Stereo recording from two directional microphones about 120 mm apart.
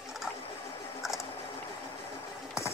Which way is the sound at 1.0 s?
5° right (ahead or behind).